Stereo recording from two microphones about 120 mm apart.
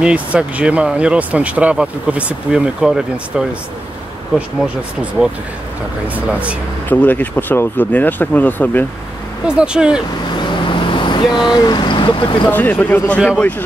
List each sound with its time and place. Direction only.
0.0 s speech: 10° right (ahead or behind)
6.0 s speech: 10° right (ahead or behind)
6.9 s speech: 15° left (ahead or behind)
9.5 s speech: 10° right (ahead or behind)
10.3 s vehicle: 40° left (ahead or behind)
12.4 s speech: 15° left (ahead or behind)